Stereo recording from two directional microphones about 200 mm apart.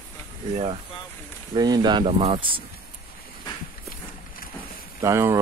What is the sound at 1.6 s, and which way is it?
Speech, 20° right (ahead or behind).